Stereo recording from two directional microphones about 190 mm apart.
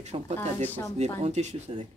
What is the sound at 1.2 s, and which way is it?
Speech, 35° right (ahead or behind).